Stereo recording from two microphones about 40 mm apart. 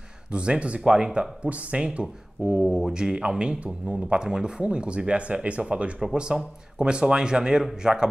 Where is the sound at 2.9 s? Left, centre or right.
Centre.